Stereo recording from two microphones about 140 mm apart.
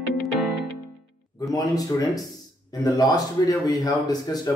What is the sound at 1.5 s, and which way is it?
Speech, 25° left (ahead or behind).